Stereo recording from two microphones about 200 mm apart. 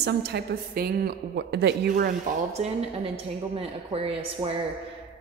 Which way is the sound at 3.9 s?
30° right (ahead or behind).